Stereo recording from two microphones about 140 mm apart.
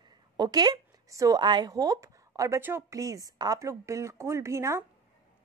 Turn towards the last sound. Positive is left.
turn(degrees=-20)  # may be behind; listen again after turning